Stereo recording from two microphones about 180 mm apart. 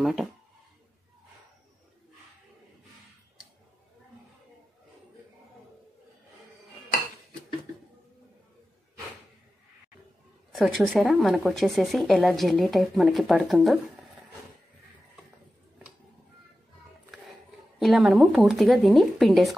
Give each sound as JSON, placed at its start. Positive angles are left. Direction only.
{"t": 0.0, "sound": "speech", "side_deg": 0}
{"t": 10.5, "sound": "speech", "side_deg": 0}
{"t": 17.7, "sound": "speech", "side_deg": 0}